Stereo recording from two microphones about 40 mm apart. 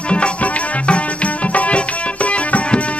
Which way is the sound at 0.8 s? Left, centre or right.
Left.